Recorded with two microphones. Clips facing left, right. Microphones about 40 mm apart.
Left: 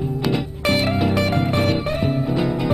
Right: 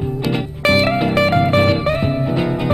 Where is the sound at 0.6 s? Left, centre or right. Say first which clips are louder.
Right 7 dB; right.